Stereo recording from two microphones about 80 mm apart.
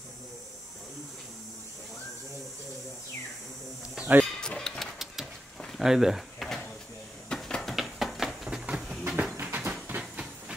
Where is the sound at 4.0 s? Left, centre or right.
Right.